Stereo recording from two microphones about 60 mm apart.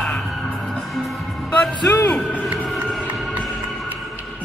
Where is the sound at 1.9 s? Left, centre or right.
Left.